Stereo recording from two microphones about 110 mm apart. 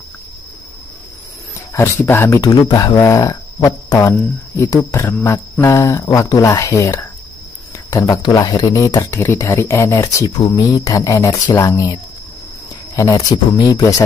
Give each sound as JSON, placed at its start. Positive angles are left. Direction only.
{"t": 1.7, "sound": "speech", "side_deg": 25}
{"t": 2.4, "sound": "speech", "side_deg": 30}